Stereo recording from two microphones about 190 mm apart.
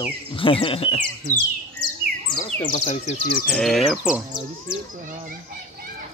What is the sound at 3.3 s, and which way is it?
Speech, 55° left (ahead or behind).